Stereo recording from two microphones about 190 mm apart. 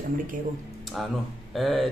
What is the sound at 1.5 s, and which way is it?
Speech, centre (ahead or behind).